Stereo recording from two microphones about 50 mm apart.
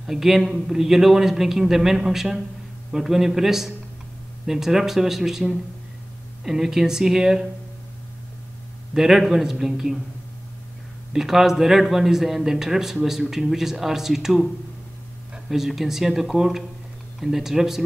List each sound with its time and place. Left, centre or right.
0.0 s speech: centre
8.9 s speech: centre
11.1 s speech: centre